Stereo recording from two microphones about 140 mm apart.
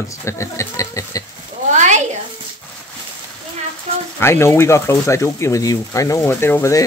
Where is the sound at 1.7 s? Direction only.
60° right (ahead or behind).